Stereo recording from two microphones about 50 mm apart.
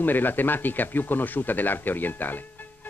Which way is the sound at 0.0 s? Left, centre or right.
Left.